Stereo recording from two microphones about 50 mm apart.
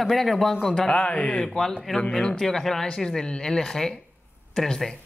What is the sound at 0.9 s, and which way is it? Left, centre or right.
Speech, left.